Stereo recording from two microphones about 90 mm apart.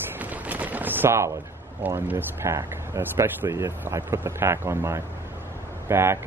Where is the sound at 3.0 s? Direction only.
20° right (ahead or behind).